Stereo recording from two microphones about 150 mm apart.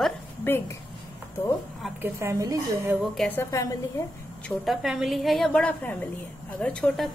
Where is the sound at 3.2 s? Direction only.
15° left (ahead or behind).